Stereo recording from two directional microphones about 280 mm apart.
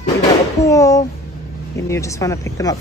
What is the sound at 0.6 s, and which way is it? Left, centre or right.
Speech, centre.